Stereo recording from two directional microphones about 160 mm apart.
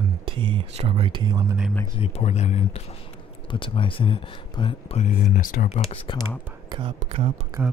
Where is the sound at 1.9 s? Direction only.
40° left (ahead or behind).